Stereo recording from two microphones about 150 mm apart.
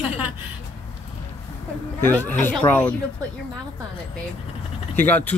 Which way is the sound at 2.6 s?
30° left (ahead or behind).